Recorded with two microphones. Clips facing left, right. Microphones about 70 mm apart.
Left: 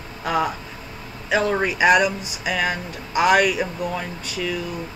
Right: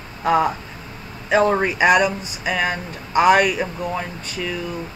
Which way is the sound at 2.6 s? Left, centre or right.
Right.